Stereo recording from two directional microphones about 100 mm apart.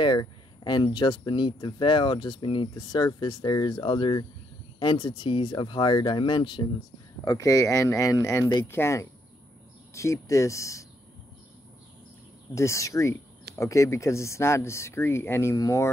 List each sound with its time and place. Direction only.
0.0 s speech: 45° left (ahead or behind)
7.2 s speech: 35° left (ahead or behind)
12.5 s speech: 30° left (ahead or behind)